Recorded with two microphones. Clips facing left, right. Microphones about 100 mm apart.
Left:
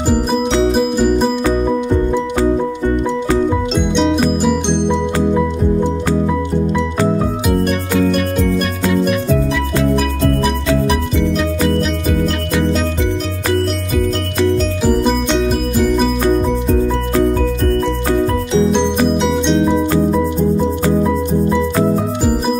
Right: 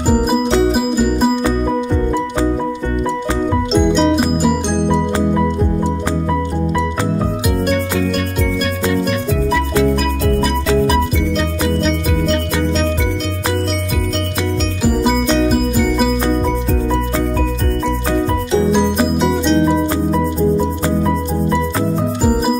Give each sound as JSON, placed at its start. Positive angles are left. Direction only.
{"t": 0.7, "sound": "music", "side_deg": -5}
{"t": 3.7, "sound": "music", "side_deg": 0}
{"t": 19.3, "sound": "music", "side_deg": 0}